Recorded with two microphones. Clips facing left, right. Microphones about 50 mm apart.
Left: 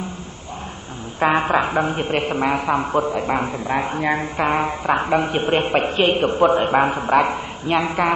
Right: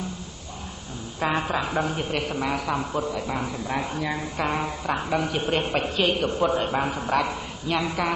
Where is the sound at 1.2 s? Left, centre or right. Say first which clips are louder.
Left 8 dB; left.